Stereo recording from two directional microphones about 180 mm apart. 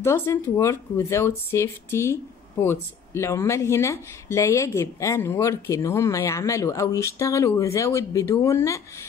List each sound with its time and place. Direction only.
0.0 s speech: 15° left (ahead or behind)